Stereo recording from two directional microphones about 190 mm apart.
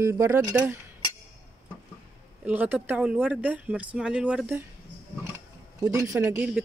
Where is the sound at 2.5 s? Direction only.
10° right (ahead or behind).